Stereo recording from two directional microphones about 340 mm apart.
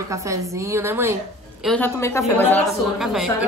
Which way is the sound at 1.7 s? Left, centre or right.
Centre.